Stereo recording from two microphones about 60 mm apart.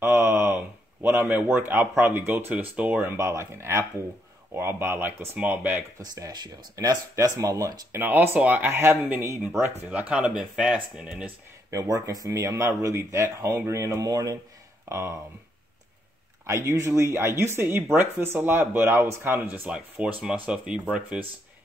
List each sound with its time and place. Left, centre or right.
0.0 s a sound: right
1.2 s speech: right
2.5 s speech: right
3.2 s speech: right
5.4 s speech: right
5.9 s speech: right
7.2 s speech: right
7.9 s speech: right
9.8 s speech: right
11.7 s speech: right
14.9 s speech: right
16.4 s speech: right
20.0 s speech: right